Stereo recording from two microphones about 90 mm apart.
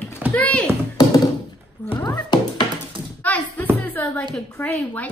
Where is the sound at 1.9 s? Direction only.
55° left (ahead or behind).